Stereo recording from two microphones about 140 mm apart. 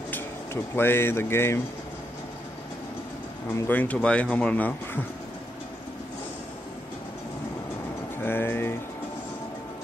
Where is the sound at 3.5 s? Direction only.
10° left (ahead or behind).